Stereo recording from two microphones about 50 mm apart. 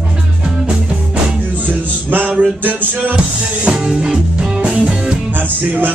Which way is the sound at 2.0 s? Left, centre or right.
Right.